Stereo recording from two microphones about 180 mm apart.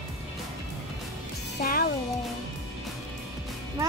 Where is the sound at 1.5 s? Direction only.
55° left (ahead or behind).